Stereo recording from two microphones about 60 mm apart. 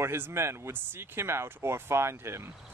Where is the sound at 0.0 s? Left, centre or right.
Right.